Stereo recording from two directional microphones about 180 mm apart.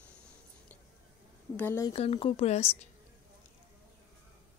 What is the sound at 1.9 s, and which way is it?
Speech, 35° left (ahead or behind).